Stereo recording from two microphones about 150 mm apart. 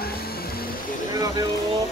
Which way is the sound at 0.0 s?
90° left.